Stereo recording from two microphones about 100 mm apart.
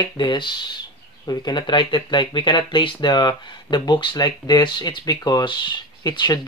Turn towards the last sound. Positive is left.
turn(degrees=45)  # may be behind; listen again after turning